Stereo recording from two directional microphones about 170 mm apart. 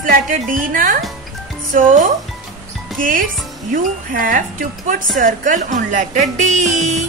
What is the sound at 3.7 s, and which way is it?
Speech, 55° right (ahead or behind).